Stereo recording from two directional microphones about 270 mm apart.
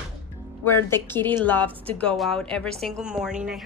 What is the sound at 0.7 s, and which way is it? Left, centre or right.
A woman's voice, centre.